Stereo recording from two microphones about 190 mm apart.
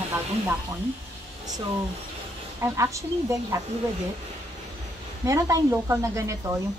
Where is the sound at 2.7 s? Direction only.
15° right (ahead or behind).